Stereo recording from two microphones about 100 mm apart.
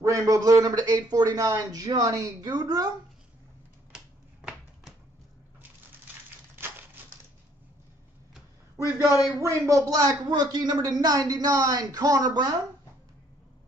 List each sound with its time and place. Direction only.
0.0 s speech: 30° right (ahead or behind)
6.5 s a sound: 25° right (ahead or behind)
9.0 s speech: 35° left (ahead or behind)
9.4 s speech: 35° right (ahead or behind)